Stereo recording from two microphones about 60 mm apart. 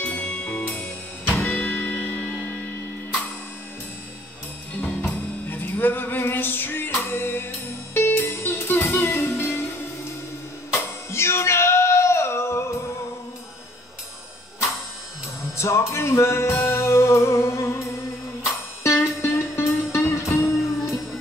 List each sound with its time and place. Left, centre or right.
0.0 s music: left
0.7 s music: left
5.5 s music: left
10.7 s a sound: left
15.5 s music: left